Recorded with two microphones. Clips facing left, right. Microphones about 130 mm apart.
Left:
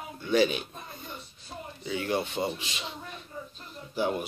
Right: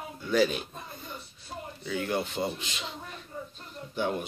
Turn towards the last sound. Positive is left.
turn(degrees=10)  # may be behind; listen again after turning